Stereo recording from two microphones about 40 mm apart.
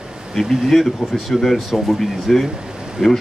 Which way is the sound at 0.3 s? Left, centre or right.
Centre.